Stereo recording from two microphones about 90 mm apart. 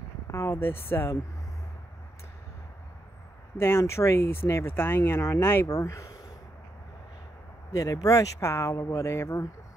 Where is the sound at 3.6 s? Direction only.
30° left (ahead or behind).